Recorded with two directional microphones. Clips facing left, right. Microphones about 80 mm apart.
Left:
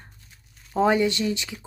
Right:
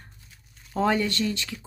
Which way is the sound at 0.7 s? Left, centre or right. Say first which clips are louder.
Left 3 dB; centre.